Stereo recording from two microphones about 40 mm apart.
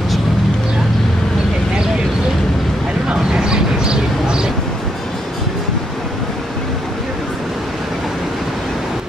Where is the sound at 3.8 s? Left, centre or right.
Right.